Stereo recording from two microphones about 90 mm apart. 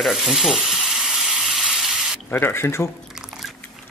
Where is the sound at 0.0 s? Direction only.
Centre (ahead or behind).